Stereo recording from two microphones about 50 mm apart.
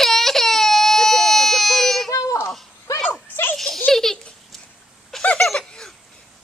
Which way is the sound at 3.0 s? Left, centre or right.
Left.